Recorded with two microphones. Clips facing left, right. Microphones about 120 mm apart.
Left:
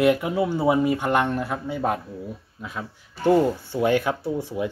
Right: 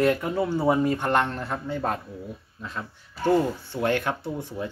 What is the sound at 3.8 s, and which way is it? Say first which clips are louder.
Speech: left 4 dB; 5° left (ahead or behind).